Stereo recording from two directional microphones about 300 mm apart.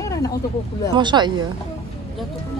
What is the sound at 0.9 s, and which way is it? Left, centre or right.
Speech, centre.